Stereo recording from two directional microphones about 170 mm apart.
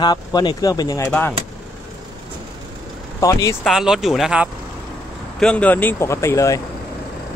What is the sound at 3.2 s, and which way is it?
Speech, 20° left (ahead or behind).